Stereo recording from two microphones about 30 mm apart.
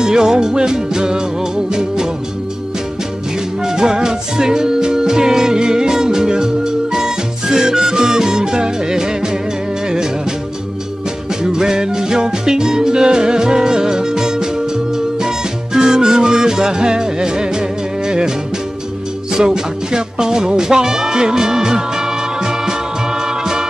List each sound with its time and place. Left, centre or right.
0.0 s music: right
3.6 s music: right
11.4 s music: right
19.3 s music: right